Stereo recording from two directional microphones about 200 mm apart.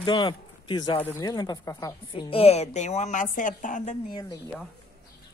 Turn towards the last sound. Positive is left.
turn(degrees=20)  # may be behind; listen again after turning